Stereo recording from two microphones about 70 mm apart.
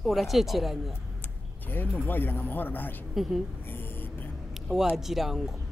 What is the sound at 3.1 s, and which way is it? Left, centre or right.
Speech, centre.